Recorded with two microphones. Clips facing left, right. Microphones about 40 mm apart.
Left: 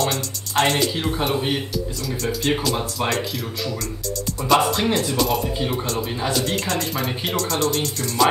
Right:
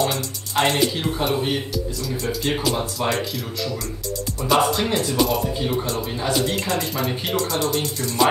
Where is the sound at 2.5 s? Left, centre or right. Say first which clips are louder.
Left 3 dB; centre.